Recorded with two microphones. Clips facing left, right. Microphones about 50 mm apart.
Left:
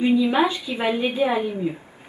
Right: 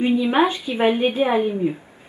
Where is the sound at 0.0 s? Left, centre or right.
Right.